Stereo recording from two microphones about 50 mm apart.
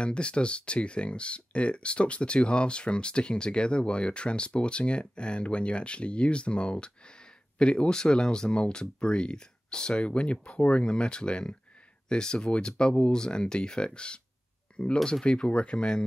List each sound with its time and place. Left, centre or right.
0.0 s speech: left